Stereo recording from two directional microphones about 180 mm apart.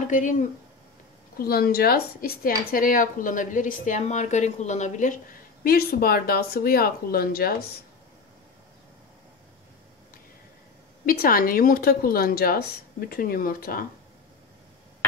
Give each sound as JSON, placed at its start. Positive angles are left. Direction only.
{"t": 0.1, "sound": "a woman's voice", "side_deg": 45}
{"t": 1.4, "sound": "a woman's voice", "side_deg": 60}
{"t": 11.1, "sound": "a woman's voice", "side_deg": 50}